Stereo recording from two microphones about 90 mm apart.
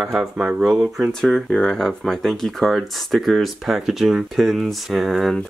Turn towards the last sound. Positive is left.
turn(degrees=0)  # may be behind; listen again after turning